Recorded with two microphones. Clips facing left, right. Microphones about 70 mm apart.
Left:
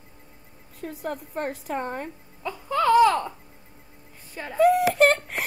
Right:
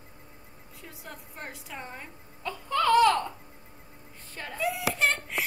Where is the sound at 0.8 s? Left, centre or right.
Left.